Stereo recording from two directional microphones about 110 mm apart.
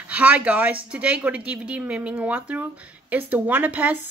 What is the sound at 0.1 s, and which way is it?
Speech, 15° right (ahead or behind).